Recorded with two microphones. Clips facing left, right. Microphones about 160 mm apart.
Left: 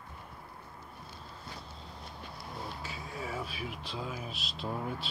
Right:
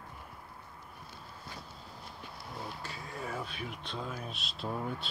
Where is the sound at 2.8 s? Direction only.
Centre (ahead or behind).